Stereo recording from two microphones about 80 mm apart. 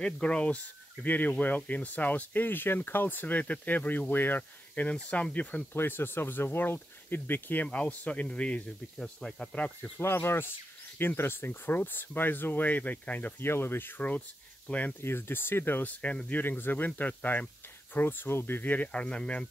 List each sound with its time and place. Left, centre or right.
0.0 s speech: centre
9.9 s speech: left
15.0 s speech: left
16.0 s speech: centre